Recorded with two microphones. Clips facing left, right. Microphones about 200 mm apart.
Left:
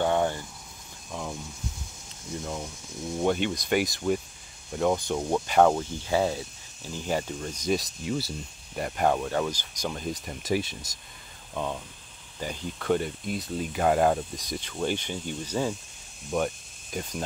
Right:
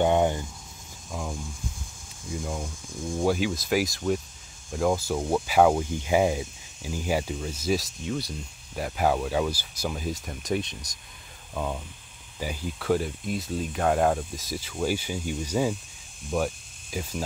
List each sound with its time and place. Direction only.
0.0 s cricket: 15° right (ahead or behind)
2.3 s cricket: 10° right (ahead or behind)
3.2 s speech: 5° right (ahead or behind)